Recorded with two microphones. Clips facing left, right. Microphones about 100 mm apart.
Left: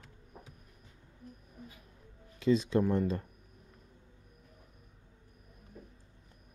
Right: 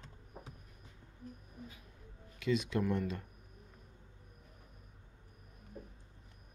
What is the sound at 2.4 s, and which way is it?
Speech, 30° left (ahead or behind).